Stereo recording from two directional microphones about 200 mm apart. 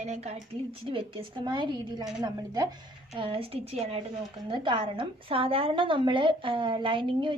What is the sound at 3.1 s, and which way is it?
A woman's voice, 30° right (ahead or behind).